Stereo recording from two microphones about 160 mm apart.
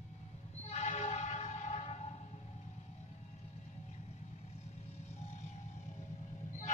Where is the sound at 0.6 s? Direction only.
45° left (ahead or behind).